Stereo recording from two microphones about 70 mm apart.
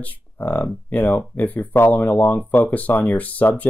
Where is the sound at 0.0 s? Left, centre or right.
Left.